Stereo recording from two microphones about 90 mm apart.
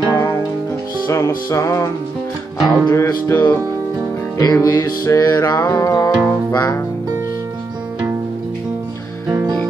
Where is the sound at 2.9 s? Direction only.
30° left (ahead or behind).